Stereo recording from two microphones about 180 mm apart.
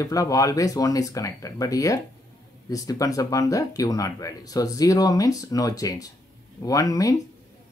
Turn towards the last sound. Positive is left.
turn(degrees=20)  # may be behind; listen again after turning